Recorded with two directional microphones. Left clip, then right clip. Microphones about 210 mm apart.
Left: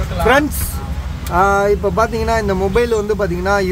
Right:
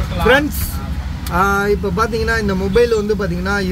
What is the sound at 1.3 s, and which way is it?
Speech, 20° left (ahead or behind).